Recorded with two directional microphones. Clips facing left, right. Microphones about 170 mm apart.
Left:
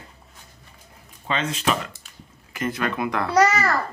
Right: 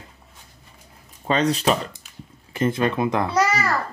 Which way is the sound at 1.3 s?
40° right (ahead or behind).